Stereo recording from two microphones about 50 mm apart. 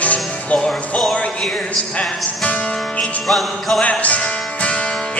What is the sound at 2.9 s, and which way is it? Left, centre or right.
Music, left.